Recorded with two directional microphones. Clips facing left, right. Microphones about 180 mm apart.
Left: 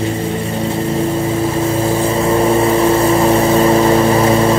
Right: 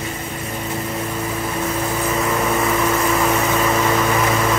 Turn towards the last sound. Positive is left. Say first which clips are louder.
# left 7 dB
turn(degrees=30)  # may be behind; listen again after turning